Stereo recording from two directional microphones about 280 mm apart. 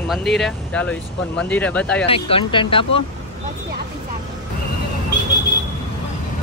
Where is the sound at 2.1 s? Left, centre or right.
Centre.